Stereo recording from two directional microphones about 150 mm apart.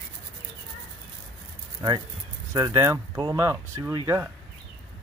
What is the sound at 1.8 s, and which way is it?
Speech, 25° right (ahead or behind).